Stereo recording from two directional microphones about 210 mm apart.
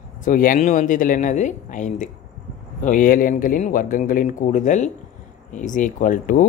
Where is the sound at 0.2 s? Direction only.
40° left (ahead or behind).